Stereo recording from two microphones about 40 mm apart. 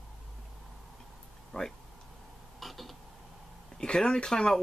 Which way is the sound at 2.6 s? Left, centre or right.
Centre.